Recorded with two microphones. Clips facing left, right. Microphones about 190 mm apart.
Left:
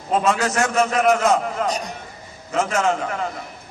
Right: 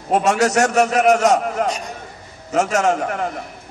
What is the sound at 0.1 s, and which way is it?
A man's voice, 75° right (ahead or behind).